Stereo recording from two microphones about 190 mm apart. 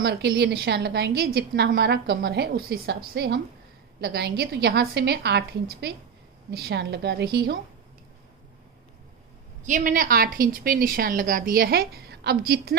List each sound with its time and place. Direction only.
0.0 s a woman's voice: 60° right (ahead or behind)
9.6 s a woman's voice: 40° right (ahead or behind)